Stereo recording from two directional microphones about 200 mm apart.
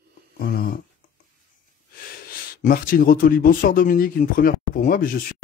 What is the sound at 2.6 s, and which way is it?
A man's voice, 45° left (ahead or behind).